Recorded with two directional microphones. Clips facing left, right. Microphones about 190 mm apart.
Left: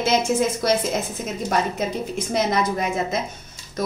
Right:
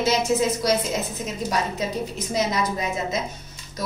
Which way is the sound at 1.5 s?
55° left (ahead or behind).